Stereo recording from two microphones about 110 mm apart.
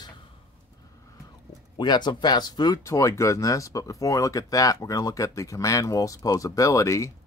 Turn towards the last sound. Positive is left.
turn(degrees=30)  # may be behind; listen again after turning